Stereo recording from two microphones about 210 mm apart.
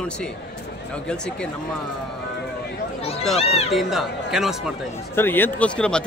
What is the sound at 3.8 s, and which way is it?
Speech, centre (ahead or behind).